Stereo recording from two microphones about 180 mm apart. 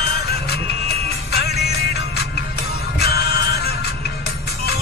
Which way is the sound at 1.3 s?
60° left (ahead or behind).